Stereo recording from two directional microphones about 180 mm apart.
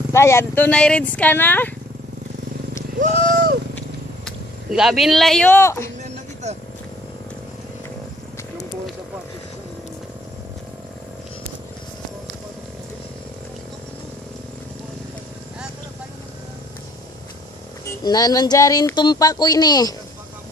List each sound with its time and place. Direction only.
0.1 s speech: 15° left (ahead or behind)
3.3 s vehicle: 50° right (ahead or behind)
3.7 s vehicle: centre (ahead or behind); by 5.9 s 15° left (ahead or behind)
6.4 s speech: 40° right (ahead or behind)
17.8 s speech: 20° left (ahead or behind)